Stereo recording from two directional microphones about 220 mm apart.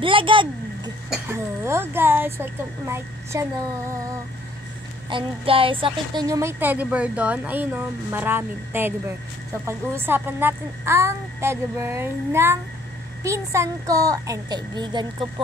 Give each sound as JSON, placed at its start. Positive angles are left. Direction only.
{"t": 0.0, "sound": "speech", "side_deg": -25}
{"t": 1.2, "sound": "speech", "side_deg": -10}
{"t": 5.1, "sound": "speech", "side_deg": -25}